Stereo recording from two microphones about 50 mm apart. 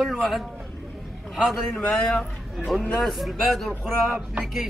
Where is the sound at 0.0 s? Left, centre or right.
Centre.